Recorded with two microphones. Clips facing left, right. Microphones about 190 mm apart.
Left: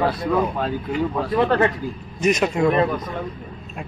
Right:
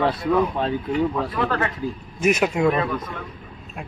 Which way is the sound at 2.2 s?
10° right (ahead or behind).